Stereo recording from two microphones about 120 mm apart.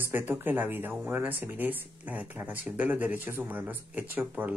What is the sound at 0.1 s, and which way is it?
Speech, 15° right (ahead or behind).